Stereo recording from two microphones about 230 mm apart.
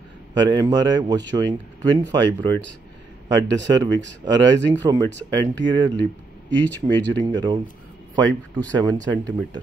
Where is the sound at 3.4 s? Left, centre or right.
Right.